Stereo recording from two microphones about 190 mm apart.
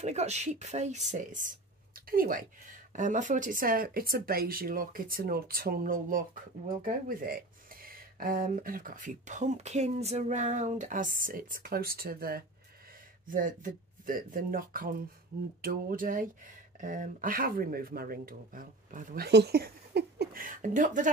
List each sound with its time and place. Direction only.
0.0 s speech: 35° right (ahead or behind)